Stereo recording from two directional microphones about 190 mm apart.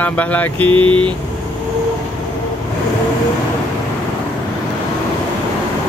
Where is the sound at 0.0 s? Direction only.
10° left (ahead or behind).